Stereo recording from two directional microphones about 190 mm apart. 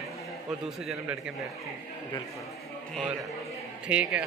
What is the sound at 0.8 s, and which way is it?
Speech, centre (ahead or behind).